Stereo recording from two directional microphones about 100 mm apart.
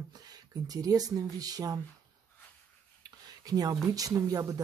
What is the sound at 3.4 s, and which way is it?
Speech, 40° right (ahead or behind).